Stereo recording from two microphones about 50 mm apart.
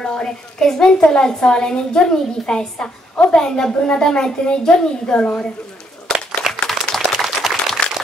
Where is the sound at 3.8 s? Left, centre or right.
Left.